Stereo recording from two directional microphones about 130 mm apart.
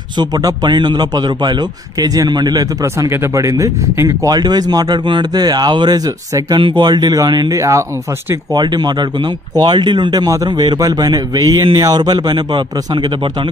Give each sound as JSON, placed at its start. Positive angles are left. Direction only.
{"t": 0.2, "sound": "a man's voice", "side_deg": -30}